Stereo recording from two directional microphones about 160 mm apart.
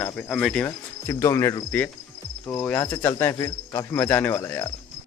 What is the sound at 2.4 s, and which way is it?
Speech, 15° left (ahead or behind).